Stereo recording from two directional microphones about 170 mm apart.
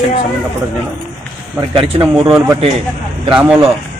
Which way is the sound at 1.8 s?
35° right (ahead or behind).